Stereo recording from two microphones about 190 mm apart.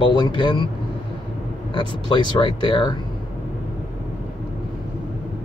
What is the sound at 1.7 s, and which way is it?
Speech, 25° left (ahead or behind).